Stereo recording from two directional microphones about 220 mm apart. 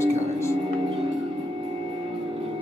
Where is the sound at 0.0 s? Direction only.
10° left (ahead or behind).